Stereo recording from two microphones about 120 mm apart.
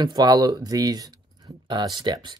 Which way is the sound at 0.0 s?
35° right (ahead or behind).